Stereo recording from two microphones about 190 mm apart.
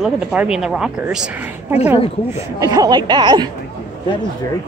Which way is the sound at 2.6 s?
20° right (ahead or behind).